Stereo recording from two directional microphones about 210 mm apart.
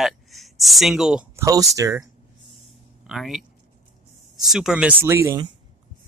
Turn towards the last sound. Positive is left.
turn(degrees=-15)  # may be behind; listen again after turning